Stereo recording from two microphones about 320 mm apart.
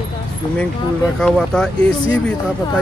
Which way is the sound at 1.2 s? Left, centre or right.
Centre.